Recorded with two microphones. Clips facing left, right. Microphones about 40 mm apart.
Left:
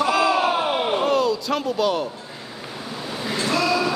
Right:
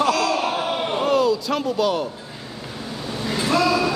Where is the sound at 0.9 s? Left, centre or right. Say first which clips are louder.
Right 4 dB; centre.